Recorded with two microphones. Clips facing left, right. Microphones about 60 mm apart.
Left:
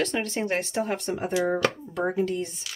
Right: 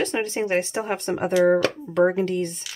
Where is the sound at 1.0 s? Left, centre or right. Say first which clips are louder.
Right 7 dB; right.